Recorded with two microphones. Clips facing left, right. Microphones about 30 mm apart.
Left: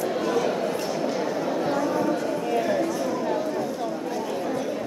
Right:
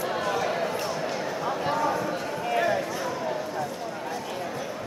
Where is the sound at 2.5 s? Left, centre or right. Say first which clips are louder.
Right 1 dB; centre.